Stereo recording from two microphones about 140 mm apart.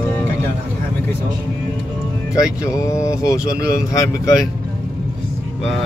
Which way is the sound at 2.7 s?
20° left (ahead or behind).